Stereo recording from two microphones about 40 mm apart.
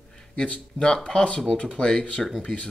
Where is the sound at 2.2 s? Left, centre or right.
Centre.